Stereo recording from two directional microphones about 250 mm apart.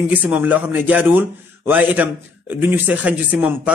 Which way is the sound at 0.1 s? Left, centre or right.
Centre.